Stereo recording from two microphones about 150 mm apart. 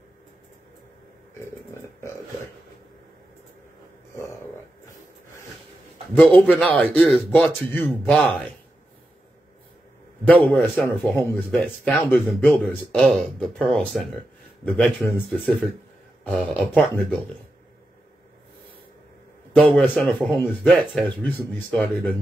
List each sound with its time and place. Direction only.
1.4 s a sound: 15° left (ahead or behind)
6.1 s a man's voice: 10° left (ahead or behind)
10.2 s a man's voice: 10° left (ahead or behind)
19.5 s a man's voice: 10° left (ahead or behind)
19.9 s speech: centre (ahead or behind)